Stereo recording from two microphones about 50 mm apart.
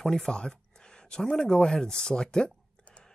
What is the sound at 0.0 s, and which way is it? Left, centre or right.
Speech, centre.